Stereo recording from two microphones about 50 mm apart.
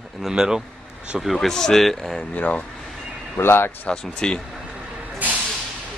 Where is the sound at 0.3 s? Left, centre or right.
Centre.